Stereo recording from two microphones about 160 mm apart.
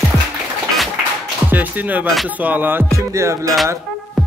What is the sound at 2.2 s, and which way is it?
Music, 10° right (ahead or behind).